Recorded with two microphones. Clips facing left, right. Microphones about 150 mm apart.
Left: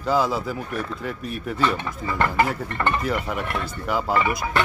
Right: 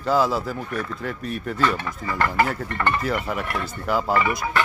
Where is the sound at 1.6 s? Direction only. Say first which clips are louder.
Even; 20° left (ahead or behind).